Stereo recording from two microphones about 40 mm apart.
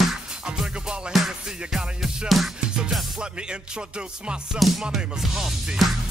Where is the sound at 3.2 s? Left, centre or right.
Right.